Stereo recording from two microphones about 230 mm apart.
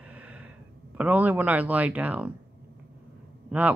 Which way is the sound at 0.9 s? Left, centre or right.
Centre.